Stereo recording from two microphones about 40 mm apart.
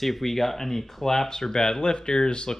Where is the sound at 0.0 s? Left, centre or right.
Centre.